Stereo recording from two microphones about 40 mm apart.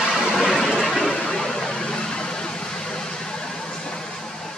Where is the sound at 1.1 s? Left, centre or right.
Centre.